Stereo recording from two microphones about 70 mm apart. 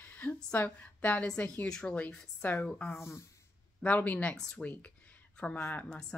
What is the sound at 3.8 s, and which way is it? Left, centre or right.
A woman's voice, left.